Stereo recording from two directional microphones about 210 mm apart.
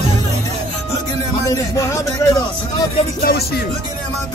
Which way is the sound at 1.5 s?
15° left (ahead or behind).